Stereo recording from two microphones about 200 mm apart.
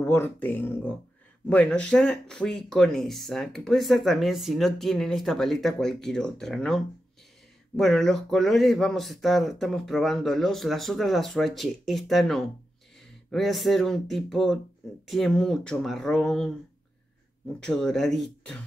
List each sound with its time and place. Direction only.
0.0 s speech: 10° left (ahead or behind)
17.6 s speech: 5° left (ahead or behind)